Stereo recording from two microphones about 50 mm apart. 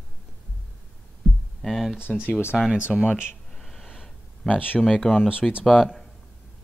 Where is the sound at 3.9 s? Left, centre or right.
Centre.